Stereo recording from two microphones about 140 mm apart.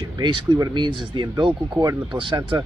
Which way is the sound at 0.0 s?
30° right (ahead or behind).